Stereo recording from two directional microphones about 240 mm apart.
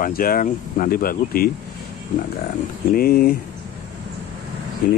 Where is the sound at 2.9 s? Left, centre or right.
Left.